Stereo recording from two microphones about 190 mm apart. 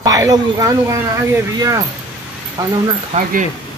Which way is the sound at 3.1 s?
35° right (ahead or behind).